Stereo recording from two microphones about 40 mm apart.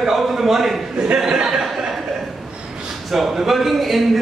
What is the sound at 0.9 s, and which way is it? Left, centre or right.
Speech, right.